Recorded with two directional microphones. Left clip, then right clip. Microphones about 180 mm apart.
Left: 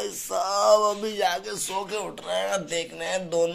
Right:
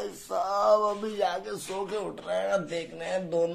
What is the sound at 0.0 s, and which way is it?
Speech, centre (ahead or behind).